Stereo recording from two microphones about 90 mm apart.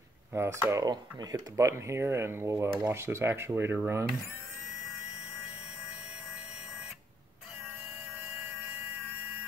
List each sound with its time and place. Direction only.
0.3 s speech: 30° right (ahead or behind)
0.8 s speech: 45° right (ahead or behind); by 4.2 s 20° right (ahead or behind)